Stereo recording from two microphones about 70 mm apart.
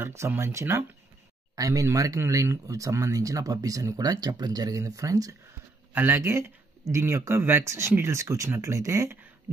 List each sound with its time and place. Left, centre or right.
0.0 s speech: right
1.5 s speech: right
4.0 s speech: right
5.9 s speech: right